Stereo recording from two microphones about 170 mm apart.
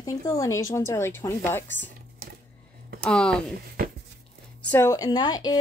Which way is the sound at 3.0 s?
5° left (ahead or behind).